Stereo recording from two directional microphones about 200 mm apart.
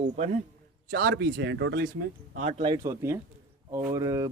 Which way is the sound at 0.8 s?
50° right (ahead or behind).